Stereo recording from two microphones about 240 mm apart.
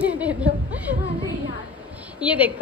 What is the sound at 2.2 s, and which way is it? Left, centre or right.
Speech, centre.